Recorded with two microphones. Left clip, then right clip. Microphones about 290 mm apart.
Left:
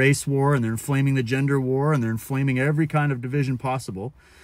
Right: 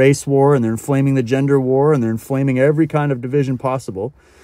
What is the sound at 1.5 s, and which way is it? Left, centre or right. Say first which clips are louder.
Speech: right 11 dB; right.